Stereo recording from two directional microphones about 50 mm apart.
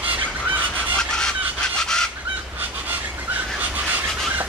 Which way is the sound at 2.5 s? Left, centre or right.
Right.